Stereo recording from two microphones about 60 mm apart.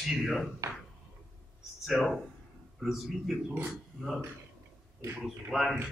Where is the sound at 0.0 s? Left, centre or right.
Centre.